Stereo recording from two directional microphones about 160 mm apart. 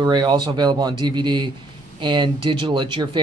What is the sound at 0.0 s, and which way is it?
Speech, 30° right (ahead or behind).